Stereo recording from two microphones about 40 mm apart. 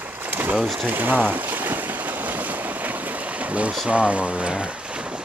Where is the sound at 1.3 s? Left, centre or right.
Right.